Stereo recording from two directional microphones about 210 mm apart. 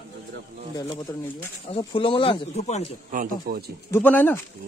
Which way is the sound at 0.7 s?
20° left (ahead or behind).